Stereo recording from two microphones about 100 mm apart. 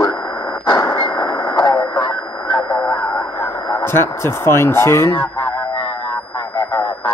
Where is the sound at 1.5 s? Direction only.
45° left (ahead or behind).